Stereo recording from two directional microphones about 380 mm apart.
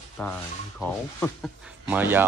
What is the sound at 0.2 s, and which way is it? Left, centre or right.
Speech, centre.